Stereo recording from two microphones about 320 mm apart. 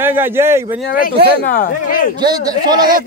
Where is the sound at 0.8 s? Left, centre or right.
Left.